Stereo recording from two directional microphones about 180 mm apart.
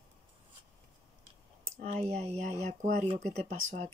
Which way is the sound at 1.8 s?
40° right (ahead or behind).